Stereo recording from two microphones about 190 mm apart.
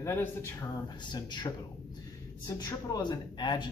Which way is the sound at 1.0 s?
20° left (ahead or behind).